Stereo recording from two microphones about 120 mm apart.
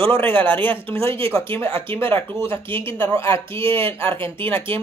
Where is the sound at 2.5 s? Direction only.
45° right (ahead or behind).